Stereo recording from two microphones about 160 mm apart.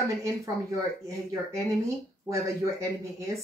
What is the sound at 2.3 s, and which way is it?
Speech, 20° right (ahead or behind).